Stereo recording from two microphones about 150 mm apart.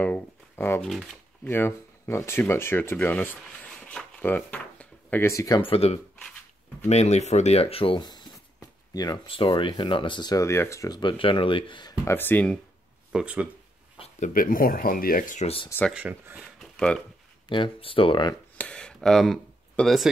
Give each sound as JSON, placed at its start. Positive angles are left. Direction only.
{"t": 0.0, "sound": "speech", "side_deg": 15}
{"t": 0.8, "sound": "speech", "side_deg": 0}
{"t": 1.5, "sound": "speech", "side_deg": 15}
{"t": 5.7, "sound": "speech", "side_deg": 45}
{"t": 12.0, "sound": "speech", "side_deg": 15}
{"t": 13.1, "sound": "speech", "side_deg": -5}
{"t": 14.2, "sound": "speech", "side_deg": 65}
{"t": 15.4, "sound": "speech", "side_deg": 40}
{"t": 15.9, "sound": "speech", "side_deg": -10}
{"t": 16.5, "sound": "a sound", "side_deg": 5}
{"t": 17.5, "sound": "speech", "side_deg": 35}
{"t": 18.6, "sound": "a sound", "side_deg": 5}